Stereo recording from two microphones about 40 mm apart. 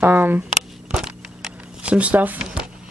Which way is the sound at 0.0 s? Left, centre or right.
Right.